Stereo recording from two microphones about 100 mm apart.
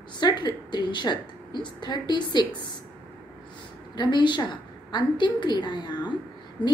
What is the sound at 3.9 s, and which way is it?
A woman's voice, 50° left (ahead or behind).